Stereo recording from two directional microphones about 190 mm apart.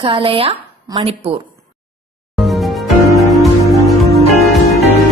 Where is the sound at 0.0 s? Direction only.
25° right (ahead or behind).